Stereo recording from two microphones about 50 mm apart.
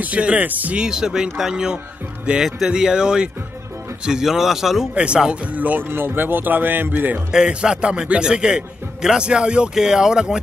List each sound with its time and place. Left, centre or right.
0.0 s speech: right
0.7 s a man's voice: centre
4.9 s speech: right
5.9 s speech: right
7.2 s a man's voice: centre